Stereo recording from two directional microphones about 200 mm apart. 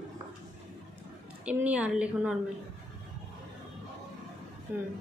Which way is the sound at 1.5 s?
5° right (ahead or behind).